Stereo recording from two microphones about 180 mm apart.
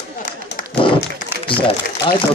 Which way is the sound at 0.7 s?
30° left (ahead or behind).